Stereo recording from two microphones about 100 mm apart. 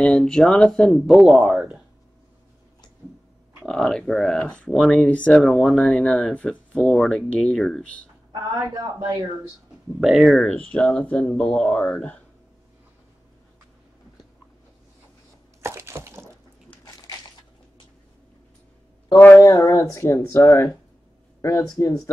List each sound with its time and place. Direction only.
0.0 s speech: 5° left (ahead or behind); by 1.8 s 15° right (ahead or behind)
3.6 s speech: 5° left (ahead or behind)
8.5 s a man's voice: 40° right (ahead or behind)
9.9 s speech: 5° right (ahead or behind)
10.7 s speech: 10° left (ahead or behind)
15.6 s a sound: 30° right (ahead or behind)
19.1 s speech: 20° left (ahead or behind)
19.4 s speech: 35° left (ahead or behind)